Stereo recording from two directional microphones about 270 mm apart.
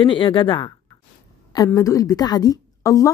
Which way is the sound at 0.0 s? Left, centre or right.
Centre.